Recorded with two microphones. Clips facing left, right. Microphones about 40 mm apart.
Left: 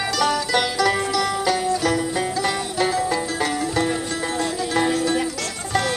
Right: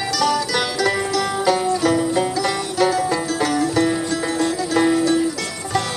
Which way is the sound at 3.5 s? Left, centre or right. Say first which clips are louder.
Right 6 dB; centre.